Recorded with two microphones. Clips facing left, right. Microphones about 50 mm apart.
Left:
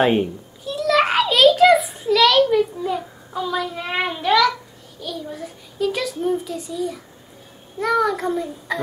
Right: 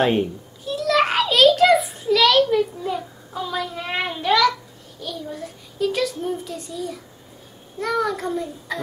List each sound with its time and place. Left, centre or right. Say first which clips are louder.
0.0 s a sound: left 2 dB; centre
5.0 s a child's voice: left 1 dB; centre
7.8 s child singing: left 3 dB; centre